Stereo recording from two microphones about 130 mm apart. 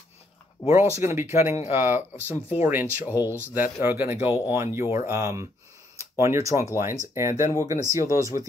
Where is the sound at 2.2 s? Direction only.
15° left (ahead or behind).